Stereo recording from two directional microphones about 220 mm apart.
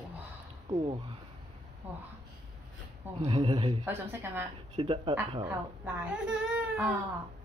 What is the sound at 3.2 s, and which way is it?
Speech, 25° right (ahead or behind).